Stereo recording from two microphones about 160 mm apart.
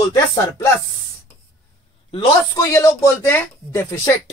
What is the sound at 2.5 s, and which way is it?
Speech, 20° left (ahead or behind).